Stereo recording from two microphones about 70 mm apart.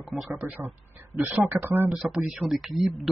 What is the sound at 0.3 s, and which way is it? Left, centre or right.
Speech, right.